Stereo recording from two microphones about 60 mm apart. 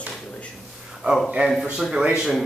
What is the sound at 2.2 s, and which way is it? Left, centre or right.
Speech, centre.